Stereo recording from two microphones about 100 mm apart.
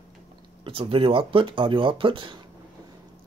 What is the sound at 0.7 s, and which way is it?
Speech, 65° right (ahead or behind).